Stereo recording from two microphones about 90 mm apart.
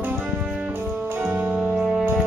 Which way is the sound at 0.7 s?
25° right (ahead or behind).